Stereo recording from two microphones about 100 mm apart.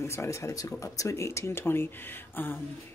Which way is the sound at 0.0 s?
25° left (ahead or behind).